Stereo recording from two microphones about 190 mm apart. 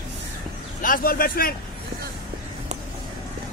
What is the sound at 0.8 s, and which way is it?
Vehicle, 45° left (ahead or behind).